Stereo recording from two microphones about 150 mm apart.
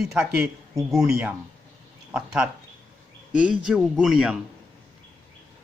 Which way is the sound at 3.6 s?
5° right (ahead or behind).